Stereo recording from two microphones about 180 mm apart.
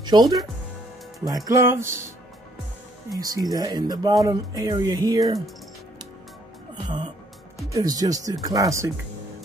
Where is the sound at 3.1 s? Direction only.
20° right (ahead or behind).